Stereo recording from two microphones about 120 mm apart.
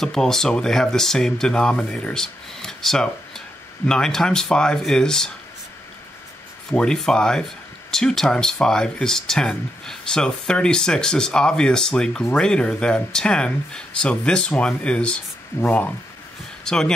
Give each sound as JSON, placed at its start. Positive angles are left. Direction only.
{"t": 0.0, "sound": "speech", "side_deg": 5}
{"t": 6.7, "sound": "speech", "side_deg": 5}